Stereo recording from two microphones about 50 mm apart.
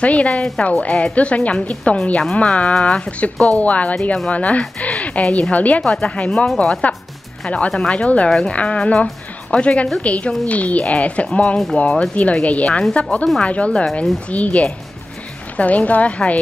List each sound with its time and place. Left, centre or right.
0.0 s a woman's voice: left